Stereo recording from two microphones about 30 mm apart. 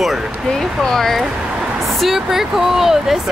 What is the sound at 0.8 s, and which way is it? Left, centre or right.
Speech, centre.